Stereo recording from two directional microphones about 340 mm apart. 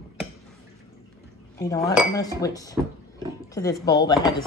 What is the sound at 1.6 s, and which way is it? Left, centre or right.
Speech, centre.